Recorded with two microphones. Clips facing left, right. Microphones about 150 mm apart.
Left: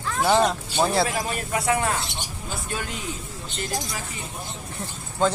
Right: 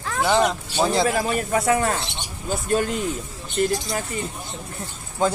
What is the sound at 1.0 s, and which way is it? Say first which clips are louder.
Speech: right 5 dB; 40° right (ahead or behind).